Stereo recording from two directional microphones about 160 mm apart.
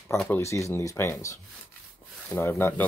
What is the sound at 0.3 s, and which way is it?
Speech, 20° left (ahead or behind).